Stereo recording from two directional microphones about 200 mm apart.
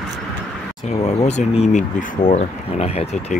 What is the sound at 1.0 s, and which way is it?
Speech, 35° left (ahead or behind).